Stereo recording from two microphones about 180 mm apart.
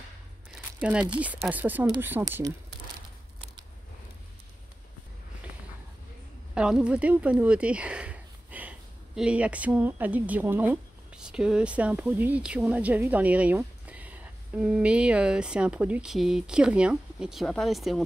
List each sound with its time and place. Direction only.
0.5 s crumpling: 5° right (ahead or behind)
1.2 s speech: 10° right (ahead or behind)
6.5 s speech: 5° right (ahead or behind)